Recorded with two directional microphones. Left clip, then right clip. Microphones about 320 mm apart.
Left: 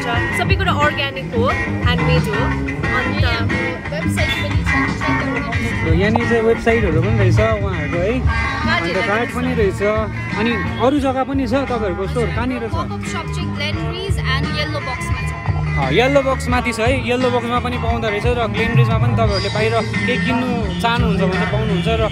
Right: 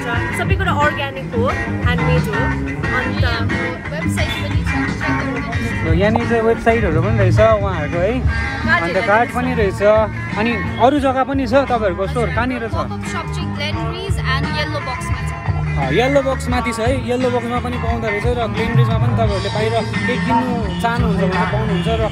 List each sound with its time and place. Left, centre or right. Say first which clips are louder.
0.1 s speech: left 2 dB; centre
2.1 s speech: even; centre
4.8 s music: left 1 dB; centre
5.9 s speech: right 1 dB; centre
16.1 s speech: left 1 dB; centre
18.3 s speech: left 1 dB; centre
20.0 s speech: right 1 dB; centre
20.8 s speech: left 1 dB; centre